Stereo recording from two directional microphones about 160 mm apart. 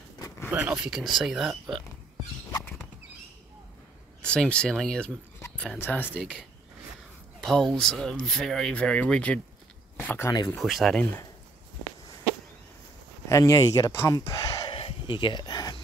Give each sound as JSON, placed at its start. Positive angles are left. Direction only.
{"t": 0.5, "sound": "speech", "side_deg": -10}
{"t": 4.2, "sound": "speech", "side_deg": 5}
{"t": 7.3, "sound": "speech", "side_deg": 5}
{"t": 10.5, "sound": "speech", "side_deg": 0}
{"t": 13.3, "sound": "speech", "side_deg": 20}
{"t": 14.7, "sound": "a sound", "side_deg": 35}